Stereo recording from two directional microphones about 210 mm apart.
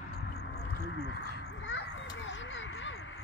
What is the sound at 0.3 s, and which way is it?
Children playing, 50° left (ahead or behind).